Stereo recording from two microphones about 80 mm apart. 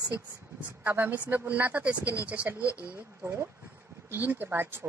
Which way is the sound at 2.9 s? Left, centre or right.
Right.